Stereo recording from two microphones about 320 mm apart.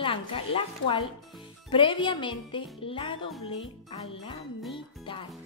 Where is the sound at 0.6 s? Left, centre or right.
Centre.